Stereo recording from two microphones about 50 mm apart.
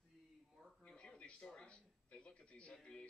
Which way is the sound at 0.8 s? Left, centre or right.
Left.